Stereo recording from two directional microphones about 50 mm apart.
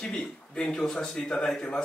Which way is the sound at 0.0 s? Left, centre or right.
Centre.